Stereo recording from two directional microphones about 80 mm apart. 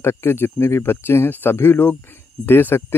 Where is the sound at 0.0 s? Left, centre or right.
Left.